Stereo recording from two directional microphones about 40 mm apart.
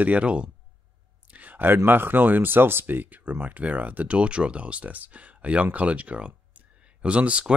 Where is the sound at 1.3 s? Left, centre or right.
Right.